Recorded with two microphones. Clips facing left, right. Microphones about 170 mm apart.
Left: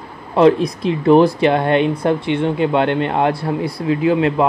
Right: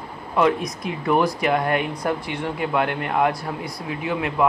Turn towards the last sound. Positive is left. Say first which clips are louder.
# left 8 dB
turn(degrees=30)  # may be behind; listen again after turning